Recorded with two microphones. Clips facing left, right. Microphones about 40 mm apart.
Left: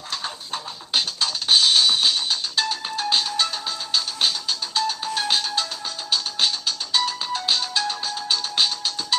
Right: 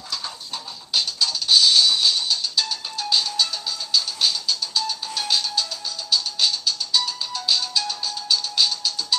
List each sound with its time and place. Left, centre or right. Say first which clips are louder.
0.1 s music: left 2 dB; left